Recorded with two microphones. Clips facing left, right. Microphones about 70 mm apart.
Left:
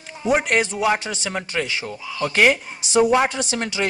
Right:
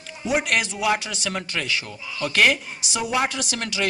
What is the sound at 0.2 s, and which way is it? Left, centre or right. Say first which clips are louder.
Speech: left 4 dB; left.